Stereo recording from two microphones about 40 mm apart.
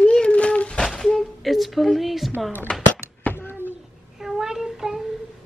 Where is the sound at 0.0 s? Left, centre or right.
Left.